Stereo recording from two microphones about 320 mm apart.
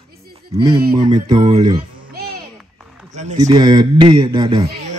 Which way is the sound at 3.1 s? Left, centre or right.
Right.